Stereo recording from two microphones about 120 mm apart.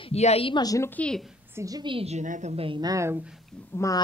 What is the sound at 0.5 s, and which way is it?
Speech, 30° left (ahead or behind).